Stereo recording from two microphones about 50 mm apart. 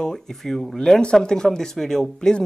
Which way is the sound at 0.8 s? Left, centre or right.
Centre.